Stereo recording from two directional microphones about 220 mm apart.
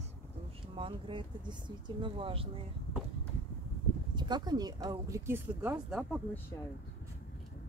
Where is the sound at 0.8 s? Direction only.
25° right (ahead or behind).